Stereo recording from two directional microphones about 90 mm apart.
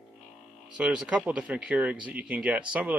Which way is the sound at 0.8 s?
10° right (ahead or behind).